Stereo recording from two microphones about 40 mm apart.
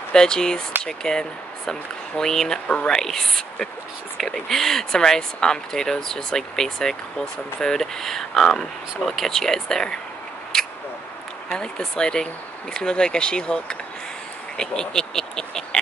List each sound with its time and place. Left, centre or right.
0.1 s speech: centre
10.5 s a sound: centre
11.5 s speech: centre